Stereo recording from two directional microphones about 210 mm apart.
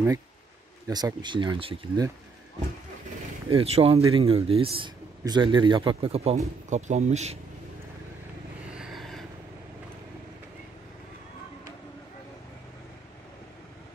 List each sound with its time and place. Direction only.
0.8 s speech: 20° right (ahead or behind)
3.4 s speech: 25° right (ahead or behind)
8.7 s vehicle: centre (ahead or behind)